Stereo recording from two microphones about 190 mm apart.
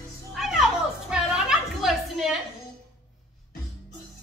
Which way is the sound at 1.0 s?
5° right (ahead or behind).